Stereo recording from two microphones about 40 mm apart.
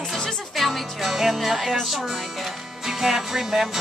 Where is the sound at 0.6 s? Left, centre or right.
Centre.